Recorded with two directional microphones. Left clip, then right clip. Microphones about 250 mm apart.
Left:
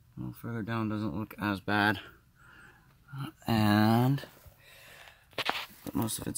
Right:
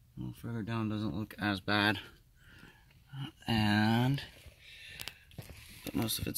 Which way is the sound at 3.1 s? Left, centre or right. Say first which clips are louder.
Left 3 dB; centre.